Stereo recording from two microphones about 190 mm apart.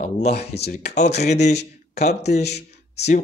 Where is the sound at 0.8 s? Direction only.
35° left (ahead or behind).